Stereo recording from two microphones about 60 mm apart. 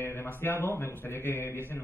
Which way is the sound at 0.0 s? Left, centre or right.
Left.